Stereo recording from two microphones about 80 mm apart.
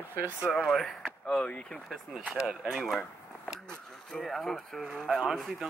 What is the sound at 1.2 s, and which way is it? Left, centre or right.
Speech, centre.